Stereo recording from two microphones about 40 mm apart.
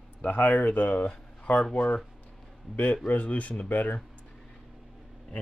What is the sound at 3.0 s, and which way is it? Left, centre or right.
Speech, left.